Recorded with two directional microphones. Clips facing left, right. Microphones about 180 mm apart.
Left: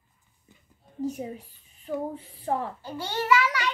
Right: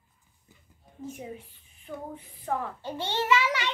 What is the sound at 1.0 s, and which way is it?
Speech, 40° left (ahead or behind).